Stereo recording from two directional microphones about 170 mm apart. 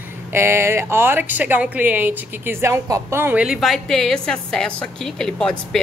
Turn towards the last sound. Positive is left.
turn(degrees=5)  # may be behind; listen again after turning